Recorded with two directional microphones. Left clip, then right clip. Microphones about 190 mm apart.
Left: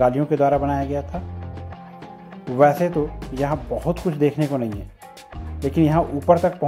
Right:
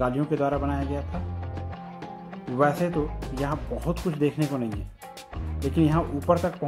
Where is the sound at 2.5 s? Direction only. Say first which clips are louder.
Left 7 dB; 25° left (ahead or behind).